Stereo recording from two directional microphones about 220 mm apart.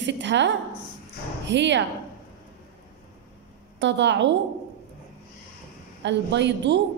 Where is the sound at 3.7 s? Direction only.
55° right (ahead or behind).